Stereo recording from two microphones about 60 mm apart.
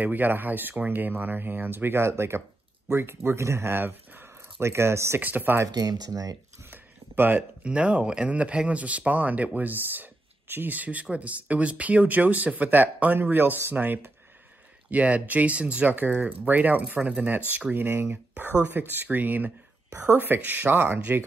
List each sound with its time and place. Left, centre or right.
0.0 s speech: right
5.2 s speech: right
5.8 s speech: right
6.7 s a sound: right
7.6 s speech: centre
17.7 s speech: right